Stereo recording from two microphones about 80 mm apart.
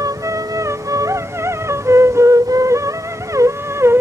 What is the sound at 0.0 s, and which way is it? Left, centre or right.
Music, right.